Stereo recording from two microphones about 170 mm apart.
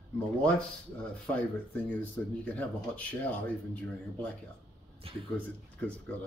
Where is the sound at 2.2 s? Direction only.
10° left (ahead or behind).